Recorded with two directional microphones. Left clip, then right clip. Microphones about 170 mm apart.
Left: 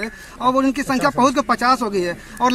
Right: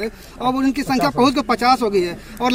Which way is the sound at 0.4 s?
40° left (ahead or behind).